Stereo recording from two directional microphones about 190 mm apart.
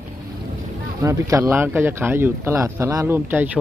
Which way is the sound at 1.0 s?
15° right (ahead or behind).